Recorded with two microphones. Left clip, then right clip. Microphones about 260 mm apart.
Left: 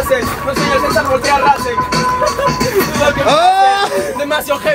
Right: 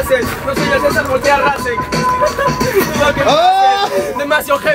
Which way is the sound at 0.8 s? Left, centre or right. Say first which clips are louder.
Even; left.